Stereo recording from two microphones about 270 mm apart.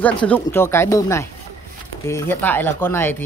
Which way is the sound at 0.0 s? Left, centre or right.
Centre.